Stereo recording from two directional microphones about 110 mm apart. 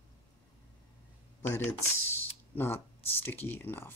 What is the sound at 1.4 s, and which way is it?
Speech, 20° left (ahead or behind).